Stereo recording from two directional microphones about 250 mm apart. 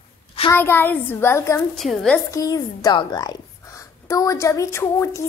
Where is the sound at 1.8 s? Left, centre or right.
Centre.